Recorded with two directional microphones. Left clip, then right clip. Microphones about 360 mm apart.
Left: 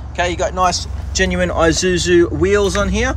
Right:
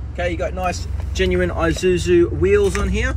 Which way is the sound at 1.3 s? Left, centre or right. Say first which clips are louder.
Left 6 dB; left.